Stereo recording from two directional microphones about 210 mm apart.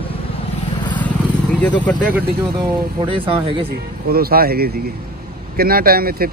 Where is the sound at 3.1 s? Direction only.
25° right (ahead or behind).